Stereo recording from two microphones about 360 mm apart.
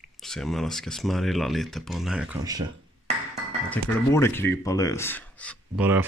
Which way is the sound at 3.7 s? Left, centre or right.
Centre.